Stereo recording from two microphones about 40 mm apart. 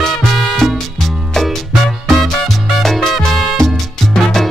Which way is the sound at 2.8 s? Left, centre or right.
Centre.